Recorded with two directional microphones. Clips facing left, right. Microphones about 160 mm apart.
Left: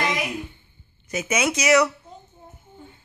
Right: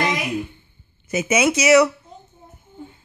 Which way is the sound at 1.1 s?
5° right (ahead or behind).